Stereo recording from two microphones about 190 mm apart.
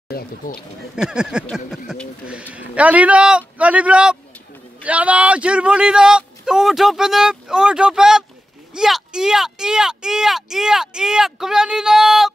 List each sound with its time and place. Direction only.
0.1 s speech: 50° left (ahead or behind)
0.9 s a man's voice: 5° right (ahead or behind)